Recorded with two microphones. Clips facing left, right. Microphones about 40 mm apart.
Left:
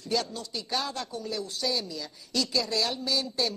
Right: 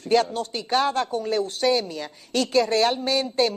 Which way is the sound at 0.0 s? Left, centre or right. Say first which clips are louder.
Right 10 dB; right.